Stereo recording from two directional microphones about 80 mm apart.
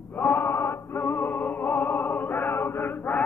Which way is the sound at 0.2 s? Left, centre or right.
Left.